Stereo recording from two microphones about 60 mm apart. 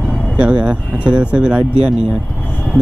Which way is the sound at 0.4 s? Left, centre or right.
Centre.